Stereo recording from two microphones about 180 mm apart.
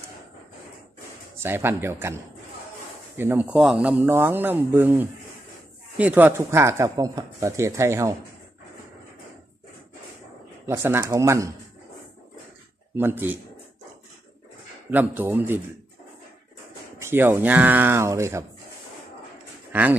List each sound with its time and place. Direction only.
1.4 s speech: 15° right (ahead or behind)
3.2 s speech: 10° right (ahead or behind)
10.7 s speech: 15° right (ahead or behind)
12.9 s speech: 10° right (ahead or behind)
14.9 s speech: 10° right (ahead or behind)
17.0 s speech: 10° right (ahead or behind)
19.7 s speech: 10° right (ahead or behind)